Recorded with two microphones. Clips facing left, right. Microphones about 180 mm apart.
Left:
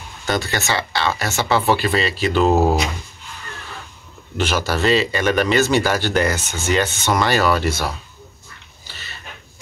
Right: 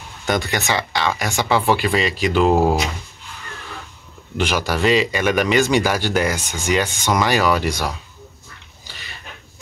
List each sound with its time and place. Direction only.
0.3 s speech: 15° right (ahead or behind)
4.4 s speech: 15° right (ahead or behind)